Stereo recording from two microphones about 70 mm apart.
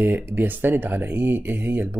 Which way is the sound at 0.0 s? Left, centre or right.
Right.